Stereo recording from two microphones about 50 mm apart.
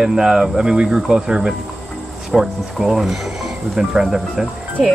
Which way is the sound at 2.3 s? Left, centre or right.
Centre.